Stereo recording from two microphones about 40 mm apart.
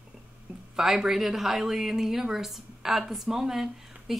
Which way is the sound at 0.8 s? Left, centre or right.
Centre.